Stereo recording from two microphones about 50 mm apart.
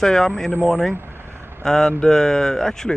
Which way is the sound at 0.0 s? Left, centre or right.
Centre.